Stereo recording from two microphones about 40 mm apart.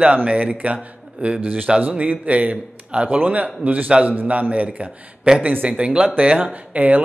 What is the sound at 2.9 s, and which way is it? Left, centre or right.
Speech, right.